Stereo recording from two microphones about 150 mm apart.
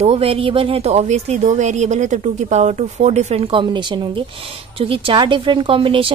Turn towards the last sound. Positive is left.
turn(degrees=-35)  # may be behind; listen again after turning